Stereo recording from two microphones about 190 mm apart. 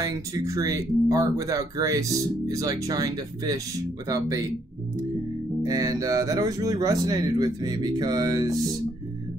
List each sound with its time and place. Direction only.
0.0 s speech: 20° right (ahead or behind)
5.6 s speech: 20° right (ahead or behind)